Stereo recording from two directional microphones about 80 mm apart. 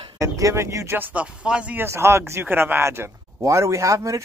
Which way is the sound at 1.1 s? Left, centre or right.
Centre.